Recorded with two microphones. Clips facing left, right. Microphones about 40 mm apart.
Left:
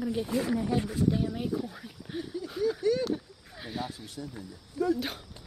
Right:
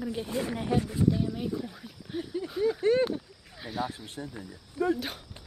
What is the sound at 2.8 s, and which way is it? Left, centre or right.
Speech, right.